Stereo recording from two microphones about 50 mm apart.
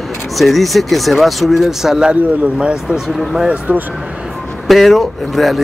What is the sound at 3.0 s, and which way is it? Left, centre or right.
Speech, centre.